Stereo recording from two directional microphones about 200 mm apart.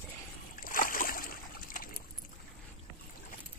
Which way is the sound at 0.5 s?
45° left (ahead or behind).